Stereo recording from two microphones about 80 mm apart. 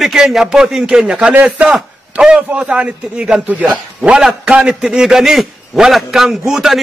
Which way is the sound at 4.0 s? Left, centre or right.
Centre.